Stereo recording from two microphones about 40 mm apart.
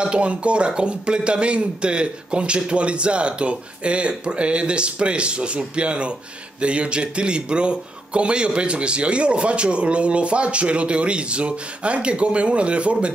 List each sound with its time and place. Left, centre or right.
0.0 s a man's voice: right